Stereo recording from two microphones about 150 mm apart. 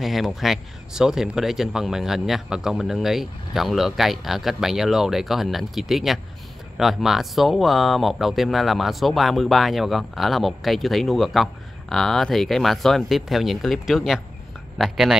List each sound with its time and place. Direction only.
0.0 s speech: centre (ahead or behind)